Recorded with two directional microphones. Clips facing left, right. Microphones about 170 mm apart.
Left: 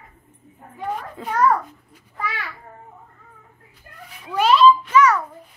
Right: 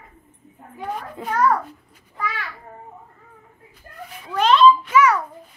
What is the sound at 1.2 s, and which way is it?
Speech, 20° right (ahead or behind).